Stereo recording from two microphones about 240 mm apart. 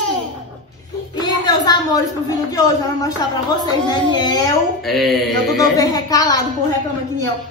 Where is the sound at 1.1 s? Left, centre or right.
Centre.